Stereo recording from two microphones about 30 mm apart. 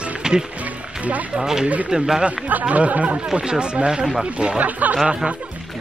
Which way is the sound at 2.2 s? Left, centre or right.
Right.